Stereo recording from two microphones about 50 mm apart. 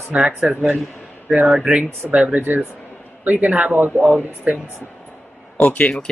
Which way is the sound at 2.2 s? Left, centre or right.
Right.